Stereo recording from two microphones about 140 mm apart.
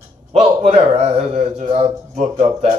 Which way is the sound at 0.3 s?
50° right (ahead or behind).